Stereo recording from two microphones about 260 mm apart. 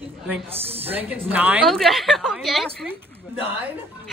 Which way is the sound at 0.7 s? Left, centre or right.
Right.